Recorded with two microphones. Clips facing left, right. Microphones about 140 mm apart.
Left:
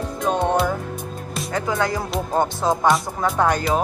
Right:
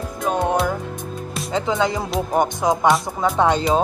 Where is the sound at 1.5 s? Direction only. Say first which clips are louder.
Right 2 dB; 20° right (ahead or behind).